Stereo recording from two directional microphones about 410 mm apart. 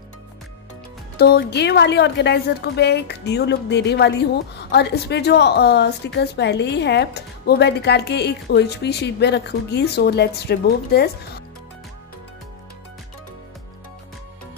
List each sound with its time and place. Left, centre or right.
1.1 s a woman's voice: left